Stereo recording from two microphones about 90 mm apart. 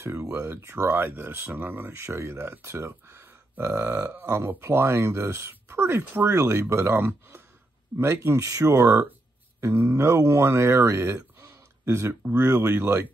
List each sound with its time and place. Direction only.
0.0 s speech: 30° right (ahead or behind)